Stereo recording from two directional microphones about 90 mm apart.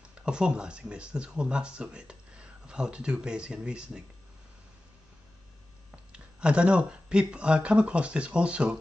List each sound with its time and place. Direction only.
0.1 s speech: 10° right (ahead or behind)
6.1 s speech: 10° right (ahead or behind)